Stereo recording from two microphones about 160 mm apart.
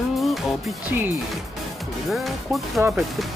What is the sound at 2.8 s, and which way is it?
Speech, 15° right (ahead or behind).